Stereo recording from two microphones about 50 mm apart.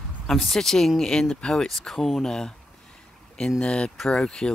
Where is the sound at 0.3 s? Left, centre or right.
Centre.